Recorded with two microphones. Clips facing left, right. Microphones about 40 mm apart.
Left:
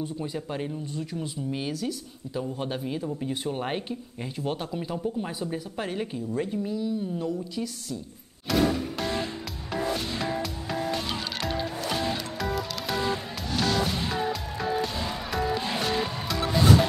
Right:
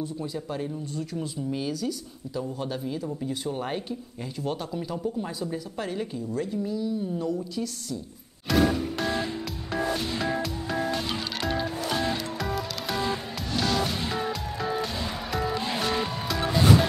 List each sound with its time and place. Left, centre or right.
0.0 s a woman's voice: left
8.5 s music: centre